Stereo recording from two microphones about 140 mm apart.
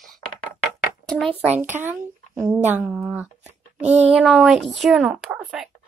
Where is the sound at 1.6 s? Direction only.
15° right (ahead or behind).